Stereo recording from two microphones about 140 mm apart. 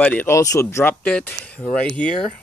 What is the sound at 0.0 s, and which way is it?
Speech, 10° left (ahead or behind).